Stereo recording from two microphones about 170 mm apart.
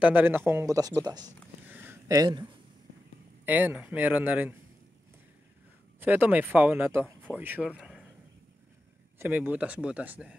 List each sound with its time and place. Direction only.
0.0 s speech: 10° right (ahead or behind)
1.7 s a sound: 10° right (ahead or behind)
3.4 s speech: 10° right (ahead or behind)
5.9 s speech: 10° right (ahead or behind)
9.2 s speech: 10° right (ahead or behind)